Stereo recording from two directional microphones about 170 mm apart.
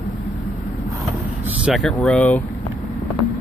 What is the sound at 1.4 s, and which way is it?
Vehicle, 10° right (ahead or behind).